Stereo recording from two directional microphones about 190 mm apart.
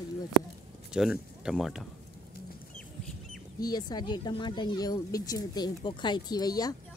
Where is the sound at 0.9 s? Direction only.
5° right (ahead or behind).